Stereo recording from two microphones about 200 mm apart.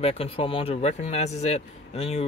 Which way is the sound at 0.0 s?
30° left (ahead or behind).